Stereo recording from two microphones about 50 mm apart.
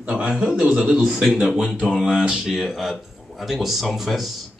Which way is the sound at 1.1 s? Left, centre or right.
Centre.